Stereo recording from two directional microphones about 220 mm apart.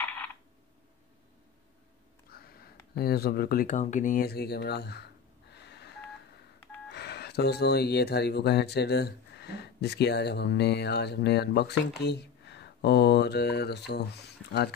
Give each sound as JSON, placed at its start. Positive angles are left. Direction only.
{"t": 2.3, "sound": "a sound", "side_deg": 45}
{"t": 2.9, "sound": "speech", "side_deg": 45}
{"t": 5.5, "sound": "telephone dialing", "side_deg": 50}
{"t": 6.9, "sound": "speech", "side_deg": 50}